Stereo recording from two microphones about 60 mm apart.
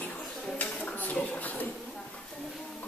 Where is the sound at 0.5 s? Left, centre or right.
Left.